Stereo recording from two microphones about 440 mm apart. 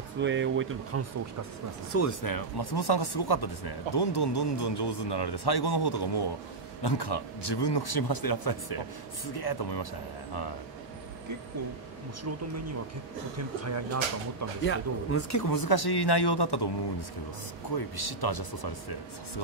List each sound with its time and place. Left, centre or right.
0.2 s speech: right
1.9 s speech: left
2.2 s speech: left
14.6 s speech: left
15.4 s speech: left
17.7 s speech: left